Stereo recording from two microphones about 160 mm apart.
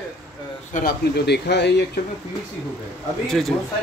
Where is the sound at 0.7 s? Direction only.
80° left.